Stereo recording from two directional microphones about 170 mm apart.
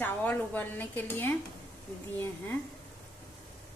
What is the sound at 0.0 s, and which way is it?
Speech, 10° left (ahead or behind).